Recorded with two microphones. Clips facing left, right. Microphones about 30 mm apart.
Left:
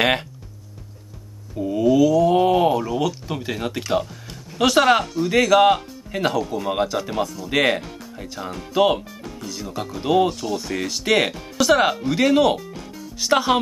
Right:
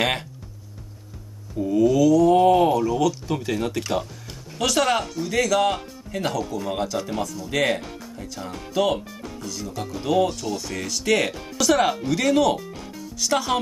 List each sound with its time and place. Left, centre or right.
1.6 s speech: centre